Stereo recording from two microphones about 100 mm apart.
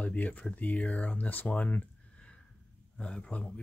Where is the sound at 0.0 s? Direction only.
15° left (ahead or behind).